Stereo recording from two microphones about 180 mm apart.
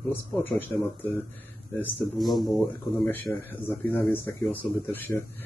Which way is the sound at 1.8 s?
Centre (ahead or behind).